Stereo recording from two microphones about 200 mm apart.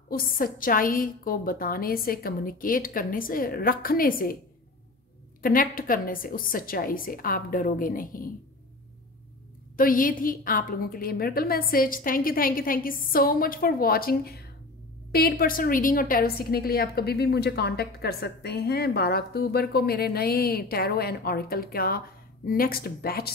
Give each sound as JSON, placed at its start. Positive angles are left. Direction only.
{"t": 0.1, "sound": "a woman's voice", "side_deg": 45}
{"t": 5.4, "sound": "a woman's voice", "side_deg": 45}
{"t": 9.8, "sound": "a woman's voice", "side_deg": 45}